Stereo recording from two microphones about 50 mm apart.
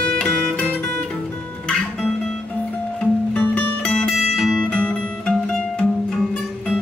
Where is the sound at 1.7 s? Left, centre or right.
Centre.